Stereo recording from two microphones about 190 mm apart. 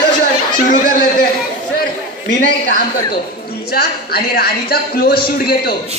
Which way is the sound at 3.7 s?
55° left (ahead or behind).